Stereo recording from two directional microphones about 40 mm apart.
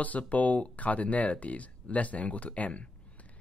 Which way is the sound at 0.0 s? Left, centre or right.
Left.